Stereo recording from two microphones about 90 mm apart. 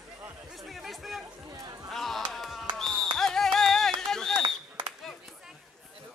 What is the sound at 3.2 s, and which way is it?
Music, 5° left (ahead or behind).